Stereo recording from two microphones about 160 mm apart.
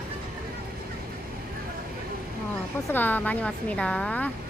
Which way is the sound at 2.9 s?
10° left (ahead or behind).